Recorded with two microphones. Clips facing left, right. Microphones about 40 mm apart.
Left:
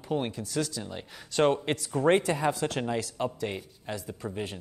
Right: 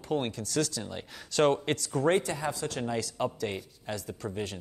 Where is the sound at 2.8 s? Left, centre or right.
Centre.